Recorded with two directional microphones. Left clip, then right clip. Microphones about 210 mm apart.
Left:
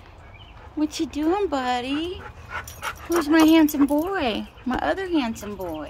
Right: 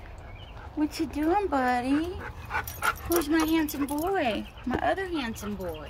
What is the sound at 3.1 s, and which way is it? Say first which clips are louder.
Speech: left 10 dB; 15° left (ahead or behind).